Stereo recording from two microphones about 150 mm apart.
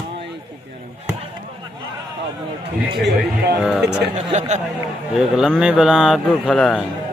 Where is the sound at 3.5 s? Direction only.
5° right (ahead or behind).